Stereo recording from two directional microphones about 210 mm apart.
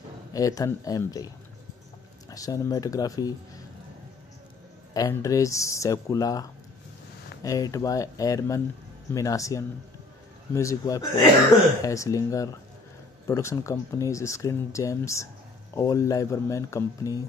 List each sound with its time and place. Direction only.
0.3 s speech: 15° left (ahead or behind)
2.3 s speech: 15° left (ahead or behind)
4.9 s speech: 15° left (ahead or behind)